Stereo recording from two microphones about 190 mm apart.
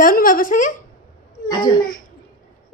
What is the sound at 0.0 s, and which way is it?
Speech, 45° left (ahead or behind).